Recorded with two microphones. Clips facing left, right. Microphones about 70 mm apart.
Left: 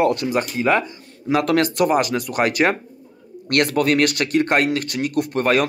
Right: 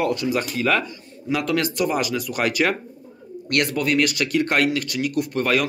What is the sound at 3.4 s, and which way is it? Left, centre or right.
Speech, left.